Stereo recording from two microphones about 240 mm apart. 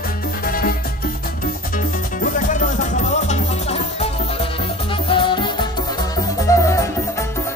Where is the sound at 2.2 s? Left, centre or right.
Left.